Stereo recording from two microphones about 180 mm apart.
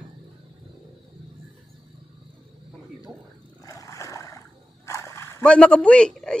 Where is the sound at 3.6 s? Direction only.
20° left (ahead or behind).